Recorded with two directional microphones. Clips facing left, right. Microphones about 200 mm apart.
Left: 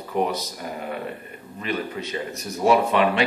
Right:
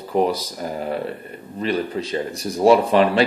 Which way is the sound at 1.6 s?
35° right (ahead or behind).